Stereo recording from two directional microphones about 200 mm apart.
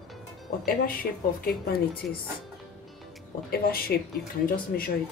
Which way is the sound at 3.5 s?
50° left (ahead or behind).